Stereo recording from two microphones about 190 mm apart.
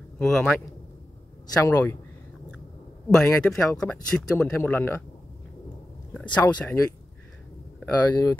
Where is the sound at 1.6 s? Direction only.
15° left (ahead or behind).